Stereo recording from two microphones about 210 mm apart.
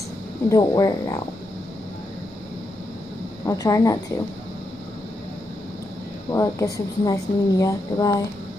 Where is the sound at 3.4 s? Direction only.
15° left (ahead or behind).